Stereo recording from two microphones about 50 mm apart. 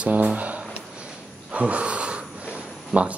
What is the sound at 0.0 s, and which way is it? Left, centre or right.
Speech, right.